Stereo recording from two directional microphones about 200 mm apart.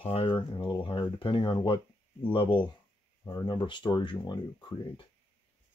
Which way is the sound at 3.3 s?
20° left (ahead or behind).